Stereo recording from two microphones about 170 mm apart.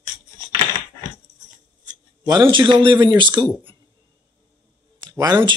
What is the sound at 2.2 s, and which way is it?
Speech, 25° right (ahead or behind).